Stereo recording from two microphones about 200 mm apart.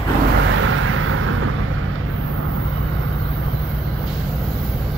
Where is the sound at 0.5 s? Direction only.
85° right.